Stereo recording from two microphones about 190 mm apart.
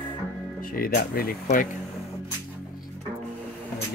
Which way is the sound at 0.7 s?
50° left (ahead or behind).